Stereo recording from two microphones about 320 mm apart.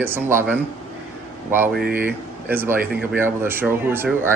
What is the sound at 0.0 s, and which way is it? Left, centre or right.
Speech, centre.